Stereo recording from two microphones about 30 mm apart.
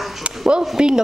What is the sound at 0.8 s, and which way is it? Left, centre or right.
Speech, right.